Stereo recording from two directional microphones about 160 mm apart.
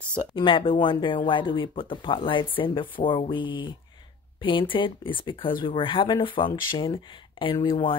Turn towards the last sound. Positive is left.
turn(degrees=30)  # may be behind; listen again after turning